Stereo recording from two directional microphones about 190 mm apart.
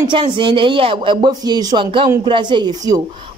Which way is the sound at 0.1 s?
25° right (ahead or behind).